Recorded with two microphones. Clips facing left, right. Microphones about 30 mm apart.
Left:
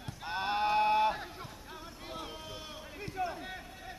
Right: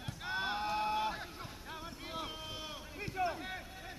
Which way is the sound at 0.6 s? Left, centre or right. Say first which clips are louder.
Left 11 dB; left.